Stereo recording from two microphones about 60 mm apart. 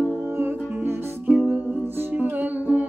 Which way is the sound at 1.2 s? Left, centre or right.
Right.